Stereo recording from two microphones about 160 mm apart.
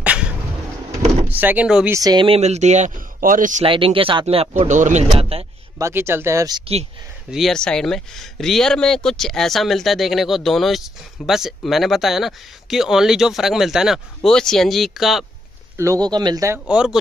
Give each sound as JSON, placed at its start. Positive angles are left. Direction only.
{"t": 1.3, "sound": "speech", "side_deg": -10}
{"t": 1.9, "sound": "speech", "side_deg": -20}
{"t": 3.6, "sound": "speech", "side_deg": -35}
{"t": 5.2, "sound": "speech", "side_deg": -35}
{"t": 5.8, "sound": "speech", "side_deg": -15}
{"t": 6.6, "sound": "speech", "side_deg": -40}
{"t": 7.2, "sound": "speech", "side_deg": 0}
{"t": 15.8, "sound": "speech", "side_deg": -25}
{"t": 16.5, "sound": "speech", "side_deg": -5}